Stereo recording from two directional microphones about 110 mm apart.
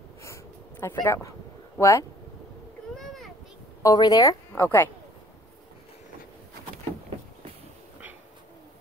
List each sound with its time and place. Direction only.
0.2 s a sound: 25° left (ahead or behind)
1.0 s speech: 25° left (ahead or behind)
3.8 s a woman's voice: 35° left (ahead or behind)
4.5 s a woman's voice: 20° left (ahead or behind)